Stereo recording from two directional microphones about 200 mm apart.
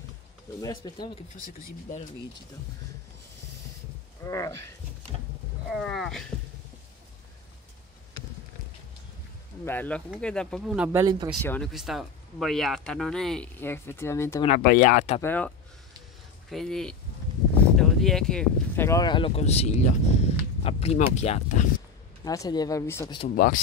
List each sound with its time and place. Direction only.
0.6 s speech: 20° left (ahead or behind)
1.4 s speech: 40° left (ahead or behind)
4.2 s speech: 15° left (ahead or behind)
5.7 s speech: centre (ahead or behind)
9.7 s speech: 10° left (ahead or behind); by 11.2 s 15° right (ahead or behind)
11.4 s speech: 10° left (ahead or behind)
11.7 s speech: centre (ahead or behind); by 14.4 s 15° left (ahead or behind)
14.6 s speech: 45° left (ahead or behind)
15.2 s speech: 10° left (ahead or behind)
18.9 s speech: 20° left (ahead or behind); by 21.6 s 35° left (ahead or behind)
22.2 s speech: 15° left (ahead or behind)
23.3 s speech: 45° left (ahead or behind)